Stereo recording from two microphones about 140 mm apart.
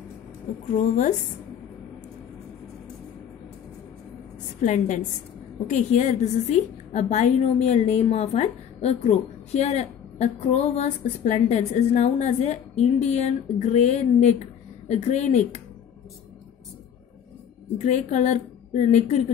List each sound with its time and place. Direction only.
0.7 s a woman's voice: 60° left (ahead or behind)
4.6 s a woman's voice: 60° left (ahead or behind)
17.7 s a woman's voice: 60° left (ahead or behind)